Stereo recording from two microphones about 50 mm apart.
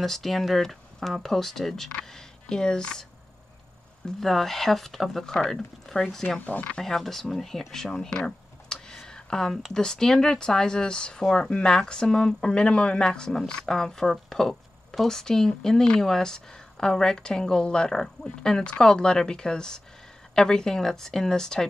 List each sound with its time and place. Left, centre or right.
0.0 s speech: centre
4.2 s speech: centre
6.4 s speech: left
6.8 s speech: centre
8.6 s a sound: centre
9.8 s speech: centre